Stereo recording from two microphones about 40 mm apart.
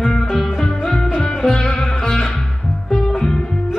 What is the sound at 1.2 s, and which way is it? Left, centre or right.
Music, centre.